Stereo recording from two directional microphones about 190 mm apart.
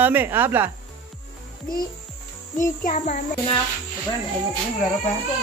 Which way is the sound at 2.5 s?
40° left (ahead or behind).